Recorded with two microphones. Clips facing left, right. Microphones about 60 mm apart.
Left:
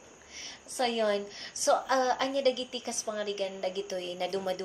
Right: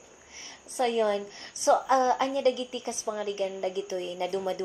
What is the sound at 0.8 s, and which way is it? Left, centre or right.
A woman's voice, centre.